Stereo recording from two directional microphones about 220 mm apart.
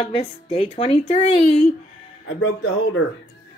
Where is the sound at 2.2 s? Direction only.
60° left (ahead or behind).